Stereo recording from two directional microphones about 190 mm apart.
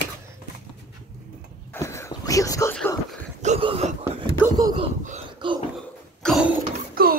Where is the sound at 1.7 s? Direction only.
15° left (ahead or behind).